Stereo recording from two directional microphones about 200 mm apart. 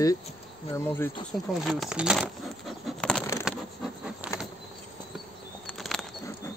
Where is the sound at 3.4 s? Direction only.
5° right (ahead or behind).